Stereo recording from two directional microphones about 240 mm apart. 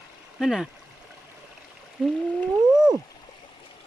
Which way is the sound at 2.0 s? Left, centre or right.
Centre.